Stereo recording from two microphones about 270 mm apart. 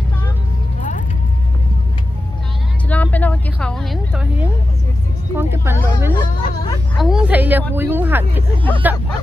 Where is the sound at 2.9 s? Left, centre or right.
Centre.